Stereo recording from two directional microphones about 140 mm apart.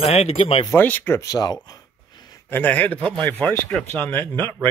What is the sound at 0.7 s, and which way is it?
Speech, 15° left (ahead or behind).